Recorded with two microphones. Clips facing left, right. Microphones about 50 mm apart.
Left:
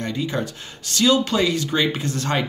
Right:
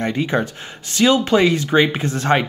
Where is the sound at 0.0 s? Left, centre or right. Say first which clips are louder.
Right 5 dB; right.